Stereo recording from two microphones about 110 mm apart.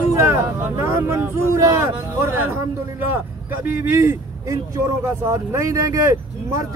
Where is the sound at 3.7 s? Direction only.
20° right (ahead or behind).